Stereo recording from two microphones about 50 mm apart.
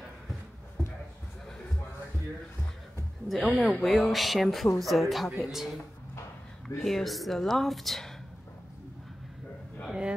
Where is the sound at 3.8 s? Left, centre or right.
Centre.